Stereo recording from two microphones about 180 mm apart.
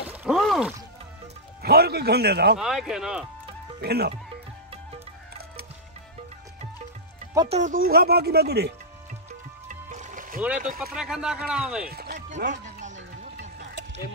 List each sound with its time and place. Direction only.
0.1 s groan: 5° right (ahead or behind)
1.6 s a man's voice: 60° right (ahead or behind)
2.6 s speech: centre (ahead or behind)
3.8 s a man's voice: 60° right (ahead or behind)
7.4 s speech: 40° right (ahead or behind)
7.8 s a man's voice: 60° right (ahead or behind)
9.7 s music: 40° right (ahead or behind)
10.6 s speech: 55° right (ahead or behind)
11.0 s speech: 5° right (ahead or behind)
11.9 s music: 60° right (ahead or behind)
12.3 s speech: 45° right (ahead or behind)
13.4 s music: 70° right (ahead or behind)